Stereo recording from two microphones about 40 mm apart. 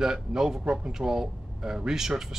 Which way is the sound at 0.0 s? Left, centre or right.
Centre.